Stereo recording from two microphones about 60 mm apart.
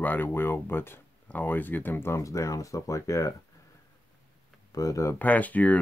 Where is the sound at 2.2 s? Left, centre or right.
Left.